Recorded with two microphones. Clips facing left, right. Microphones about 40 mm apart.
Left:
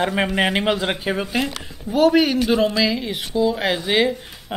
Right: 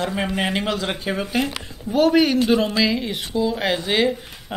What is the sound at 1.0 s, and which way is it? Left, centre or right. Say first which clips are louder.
Speech: left 1 dB; centre.